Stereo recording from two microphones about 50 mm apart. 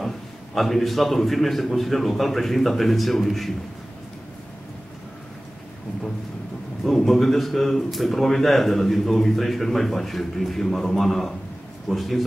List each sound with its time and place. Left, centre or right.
0.6 s a man's voice: centre
6.8 s a man's voice: centre